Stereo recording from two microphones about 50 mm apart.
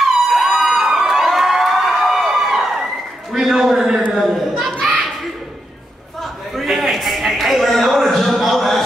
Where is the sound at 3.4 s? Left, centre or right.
Centre.